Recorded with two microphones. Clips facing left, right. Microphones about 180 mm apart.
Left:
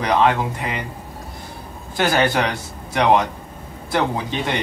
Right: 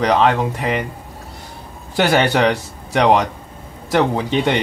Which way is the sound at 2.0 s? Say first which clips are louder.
Right 3 dB; 70° right (ahead or behind).